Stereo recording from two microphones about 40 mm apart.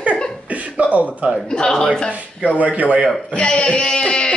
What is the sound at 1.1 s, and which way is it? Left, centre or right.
Speech, right.